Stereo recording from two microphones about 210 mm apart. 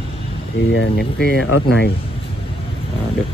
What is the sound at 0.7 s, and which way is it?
Speech, 55° left (ahead or behind).